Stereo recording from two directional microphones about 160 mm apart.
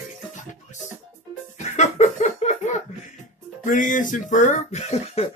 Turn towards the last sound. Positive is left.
turn(degrees=45)  # may be behind; listen again after turning